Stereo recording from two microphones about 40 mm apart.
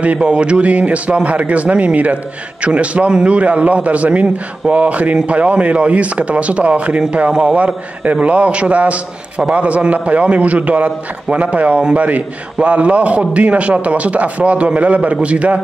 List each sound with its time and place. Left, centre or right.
0.2 s a man's voice: right
7.2 s a man's voice: right
7.5 s a man's voice: right